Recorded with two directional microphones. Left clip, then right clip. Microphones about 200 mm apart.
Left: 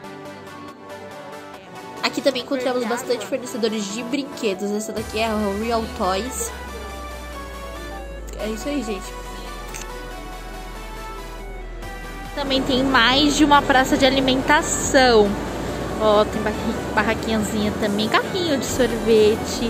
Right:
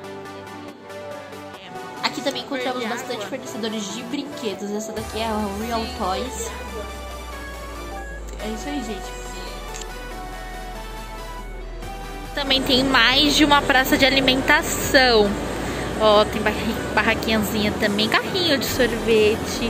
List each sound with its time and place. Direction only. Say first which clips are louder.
2.0 s music: left 4 dB; 30° left (ahead or behind)
2.5 s a woman's voice: left 3 dB; 5° left (ahead or behind)
3.6 s music: left 4 dB; 25° left (ahead or behind)
5.9 s speech: left 2 dB; 30° left (ahead or behind)
12.4 s a woman's voice: right 2 dB; 5° left (ahead or behind); by 19.7 s 20° left (ahead or behind)